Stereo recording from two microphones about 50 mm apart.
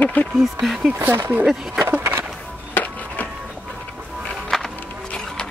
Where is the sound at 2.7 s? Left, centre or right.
Left.